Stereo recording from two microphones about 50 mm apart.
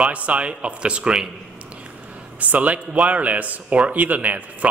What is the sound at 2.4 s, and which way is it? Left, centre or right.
A man's voice, right.